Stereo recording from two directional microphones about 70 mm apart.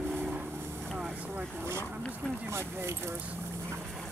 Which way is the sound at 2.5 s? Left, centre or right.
Right.